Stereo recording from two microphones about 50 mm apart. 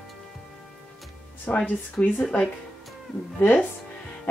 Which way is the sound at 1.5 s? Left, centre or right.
Left.